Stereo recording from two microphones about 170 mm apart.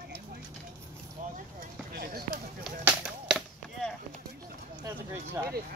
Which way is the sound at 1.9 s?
65° right (ahead or behind).